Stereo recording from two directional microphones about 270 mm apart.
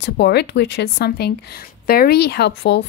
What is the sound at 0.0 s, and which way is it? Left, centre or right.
Speech, left.